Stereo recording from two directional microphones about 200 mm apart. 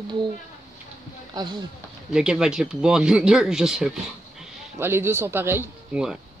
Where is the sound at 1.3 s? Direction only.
20° right (ahead or behind).